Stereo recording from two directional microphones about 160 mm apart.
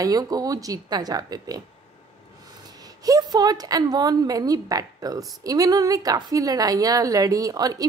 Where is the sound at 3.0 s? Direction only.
25° right (ahead or behind).